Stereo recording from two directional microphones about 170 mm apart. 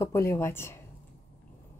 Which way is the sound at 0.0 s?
15° left (ahead or behind).